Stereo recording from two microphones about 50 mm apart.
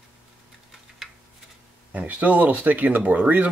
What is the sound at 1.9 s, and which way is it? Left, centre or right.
Speech, right.